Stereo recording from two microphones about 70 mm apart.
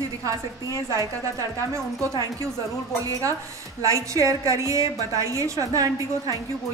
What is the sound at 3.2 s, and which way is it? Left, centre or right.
A woman's voice, right.